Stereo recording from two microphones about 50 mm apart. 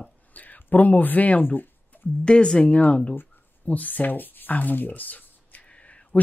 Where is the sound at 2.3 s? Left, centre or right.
Centre.